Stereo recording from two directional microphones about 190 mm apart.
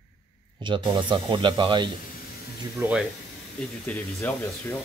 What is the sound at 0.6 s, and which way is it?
Speech, 25° right (ahead or behind).